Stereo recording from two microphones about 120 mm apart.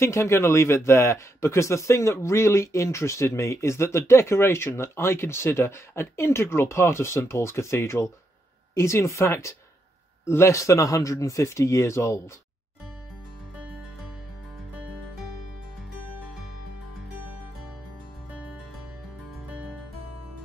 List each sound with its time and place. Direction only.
0.0 s speech: 25° left (ahead or behind)